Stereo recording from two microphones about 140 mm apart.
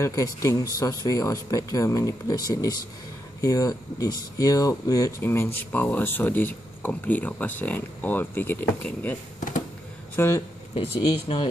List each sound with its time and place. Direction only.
0.0 s speech: 25° left (ahead or behind)
10.1 s speech: 20° left (ahead or behind)
11.0 s speech: 35° left (ahead or behind)